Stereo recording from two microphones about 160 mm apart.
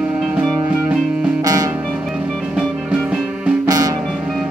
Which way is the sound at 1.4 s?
25° right (ahead or behind).